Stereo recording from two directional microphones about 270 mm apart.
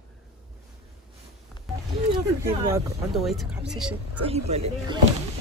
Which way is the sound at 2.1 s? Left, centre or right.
Centre.